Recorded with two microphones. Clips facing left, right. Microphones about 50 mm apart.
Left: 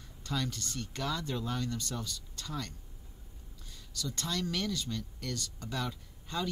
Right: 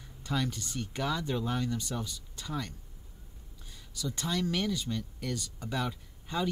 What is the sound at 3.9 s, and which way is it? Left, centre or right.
Speech, centre.